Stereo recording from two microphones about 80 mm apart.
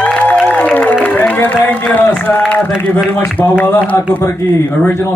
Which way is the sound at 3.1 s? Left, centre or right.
Left.